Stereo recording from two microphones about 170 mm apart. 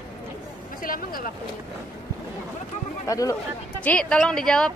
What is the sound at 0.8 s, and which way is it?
Speech, 55° left (ahead or behind).